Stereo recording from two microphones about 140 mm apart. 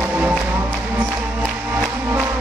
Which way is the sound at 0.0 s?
15° right (ahead or behind).